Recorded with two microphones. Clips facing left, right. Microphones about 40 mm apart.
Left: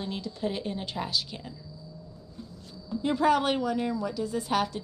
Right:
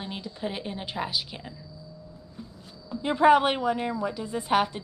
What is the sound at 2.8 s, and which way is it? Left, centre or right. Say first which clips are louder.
A woman's voice: right 4 dB; right.